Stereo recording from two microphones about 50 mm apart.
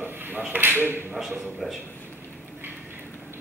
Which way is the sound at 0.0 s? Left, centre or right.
Right.